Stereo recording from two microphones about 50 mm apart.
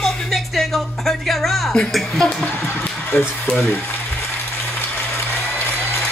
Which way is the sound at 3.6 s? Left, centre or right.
Left.